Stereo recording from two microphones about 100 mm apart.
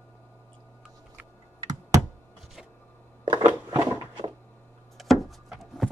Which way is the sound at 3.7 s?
30° right (ahead or behind).